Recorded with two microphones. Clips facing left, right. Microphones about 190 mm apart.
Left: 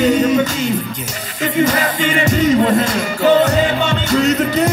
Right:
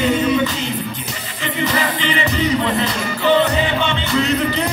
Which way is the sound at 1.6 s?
45° left (ahead or behind).